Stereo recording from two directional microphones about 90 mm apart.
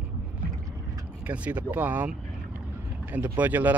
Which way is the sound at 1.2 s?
15° right (ahead or behind).